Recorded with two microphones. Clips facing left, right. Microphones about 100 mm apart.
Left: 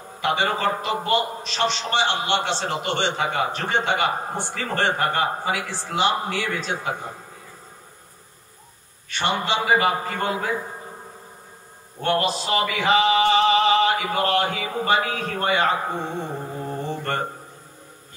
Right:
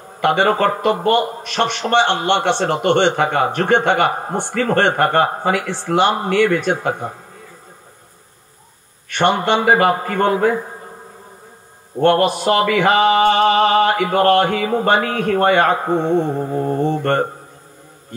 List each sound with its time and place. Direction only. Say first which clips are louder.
0.2 s a man's voice: right 7 dB; 55° right (ahead or behind)
9.1 s a man's voice: right 8 dB; 55° right (ahead or behind)
12.0 s a man's voice: right 8 dB; 55° right (ahead or behind)